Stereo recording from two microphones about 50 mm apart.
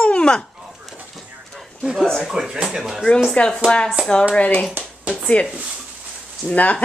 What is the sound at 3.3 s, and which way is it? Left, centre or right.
Speech, left.